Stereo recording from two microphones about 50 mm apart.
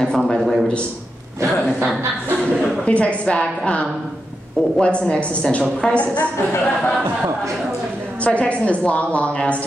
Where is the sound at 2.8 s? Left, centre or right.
Left.